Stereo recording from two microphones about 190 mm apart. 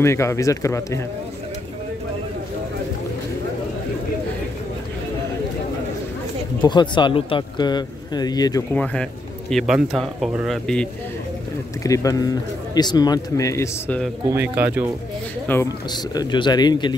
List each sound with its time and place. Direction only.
0.0 s a man's voice: 15° left (ahead or behind)
6.6 s speech: 25° left (ahead or behind)
8.7 s a man's voice: 5° left (ahead or behind)
11.8 s a man's voice: 15° left (ahead or behind)
14.3 s speech: 10° right (ahead or behind)
15.4 s speech: 10° left (ahead or behind)
15.9 s speech: 25° left (ahead or behind)